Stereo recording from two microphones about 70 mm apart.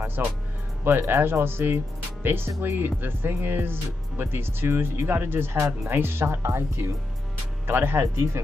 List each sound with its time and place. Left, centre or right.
0.0 s speech: right
8.0 s speech: right